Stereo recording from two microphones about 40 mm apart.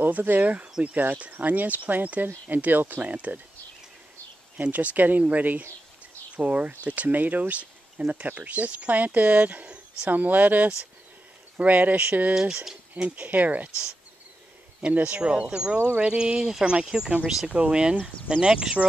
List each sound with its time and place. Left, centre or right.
0.0 s speech: right
3.0 s speech: right
4.6 s speech: right
15.0 s speech: right